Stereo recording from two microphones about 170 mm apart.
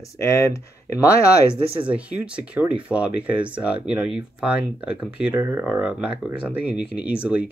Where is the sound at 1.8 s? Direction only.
5° right (ahead or behind).